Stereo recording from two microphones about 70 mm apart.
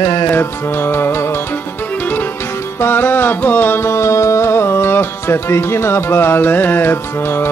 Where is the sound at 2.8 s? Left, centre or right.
Left.